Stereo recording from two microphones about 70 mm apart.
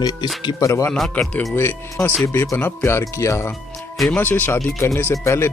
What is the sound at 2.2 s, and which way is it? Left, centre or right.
Speech, left.